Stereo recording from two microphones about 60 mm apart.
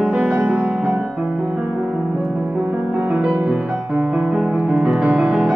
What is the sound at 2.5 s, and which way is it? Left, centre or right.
Music, right.